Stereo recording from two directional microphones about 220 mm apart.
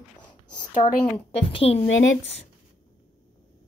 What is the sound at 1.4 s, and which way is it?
Speech, 25° left (ahead or behind).